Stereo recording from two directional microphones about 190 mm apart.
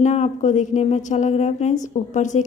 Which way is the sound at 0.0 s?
40° left (ahead or behind).